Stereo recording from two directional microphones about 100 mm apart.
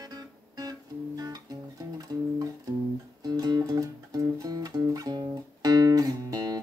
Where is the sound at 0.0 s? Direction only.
40° right (ahead or behind).